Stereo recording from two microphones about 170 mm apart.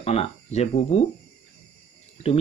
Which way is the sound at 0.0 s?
35° left (ahead or behind).